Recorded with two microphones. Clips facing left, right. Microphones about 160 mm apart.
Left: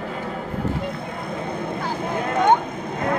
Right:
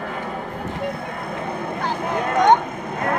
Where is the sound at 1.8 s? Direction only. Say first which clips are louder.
Right 4 dB; 70° right (ahead or behind).